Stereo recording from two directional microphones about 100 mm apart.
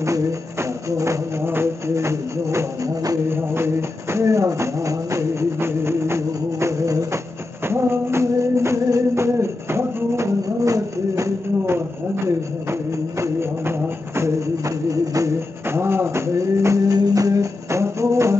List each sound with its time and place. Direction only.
0.0 s music: 30° right (ahead or behind)
3.3 s a sound: 25° right (ahead or behind)
7.6 s music: 25° right (ahead or behind)
13.2 s music: 25° right (ahead or behind)